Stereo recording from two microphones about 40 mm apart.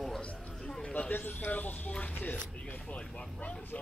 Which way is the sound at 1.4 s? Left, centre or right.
Left.